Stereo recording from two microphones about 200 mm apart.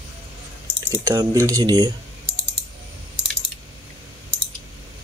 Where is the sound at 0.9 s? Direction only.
15° right (ahead or behind).